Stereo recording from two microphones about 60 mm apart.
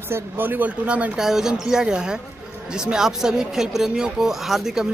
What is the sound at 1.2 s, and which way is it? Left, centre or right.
Speech, centre.